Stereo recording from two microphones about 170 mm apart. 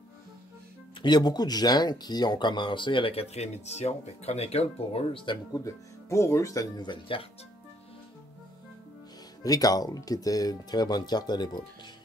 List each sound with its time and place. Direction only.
1.0 s speech: 25° left (ahead or behind)
9.4 s speech: 20° left (ahead or behind)